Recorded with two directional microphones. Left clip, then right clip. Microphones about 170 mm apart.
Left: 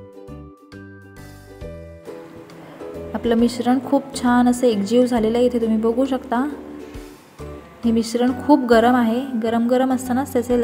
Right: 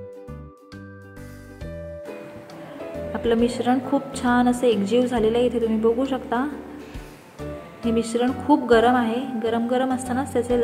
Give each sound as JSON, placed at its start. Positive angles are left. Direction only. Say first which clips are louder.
{"t": 3.1, "sound": "a woman's voice", "louder": "left 2 dB", "side_deg": 40}
{"t": 7.9, "sound": "a woman's voice", "louder": "left 2 dB", "side_deg": 45}